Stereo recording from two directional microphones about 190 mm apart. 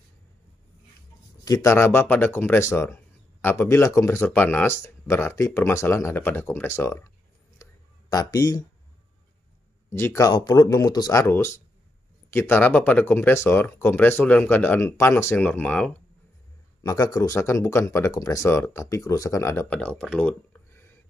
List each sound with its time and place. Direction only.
1.4 s speech: 15° left (ahead or behind)
8.1 s speech: 20° left (ahead or behind)
9.8 s speech: 15° left (ahead or behind)
16.8 s speech: 20° left (ahead or behind)